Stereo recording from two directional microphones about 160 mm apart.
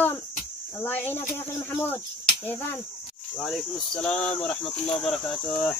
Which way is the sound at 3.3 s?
Centre (ahead or behind).